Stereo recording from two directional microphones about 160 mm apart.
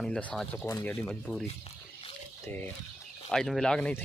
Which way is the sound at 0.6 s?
15° left (ahead or behind).